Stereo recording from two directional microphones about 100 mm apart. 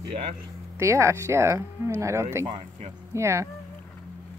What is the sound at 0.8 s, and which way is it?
Speech, 30° right (ahead or behind).